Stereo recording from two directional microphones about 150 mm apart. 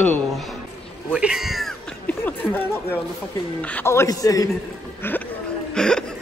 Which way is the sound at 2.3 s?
10° left (ahead or behind).